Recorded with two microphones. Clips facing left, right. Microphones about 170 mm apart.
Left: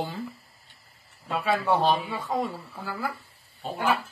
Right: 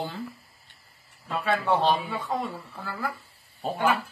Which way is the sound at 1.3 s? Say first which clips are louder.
Left 1 dB; 5° left (ahead or behind).